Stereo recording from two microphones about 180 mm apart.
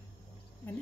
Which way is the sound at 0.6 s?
10° left (ahead or behind).